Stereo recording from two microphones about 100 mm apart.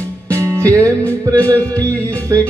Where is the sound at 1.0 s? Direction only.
15° left (ahead or behind).